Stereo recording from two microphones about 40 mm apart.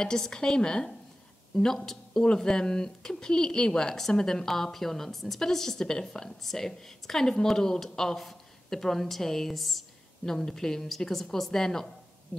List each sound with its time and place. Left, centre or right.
0.0 s a woman's voice: centre